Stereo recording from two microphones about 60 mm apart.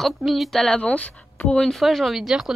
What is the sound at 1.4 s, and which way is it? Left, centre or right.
Speech, centre.